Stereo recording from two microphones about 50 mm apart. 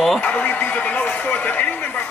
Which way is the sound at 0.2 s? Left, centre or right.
Left.